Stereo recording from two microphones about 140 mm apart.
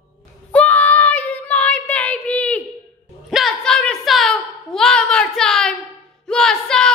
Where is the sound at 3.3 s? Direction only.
Centre (ahead or behind).